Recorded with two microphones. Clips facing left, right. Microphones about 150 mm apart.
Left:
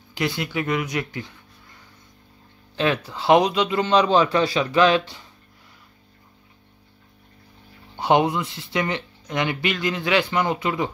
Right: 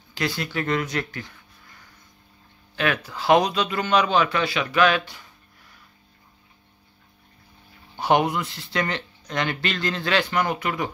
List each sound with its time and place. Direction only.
0.1 s speech: 20° left (ahead or behind)
2.7 s speech: 25° left (ahead or behind)
7.9 s speech: 20° left (ahead or behind)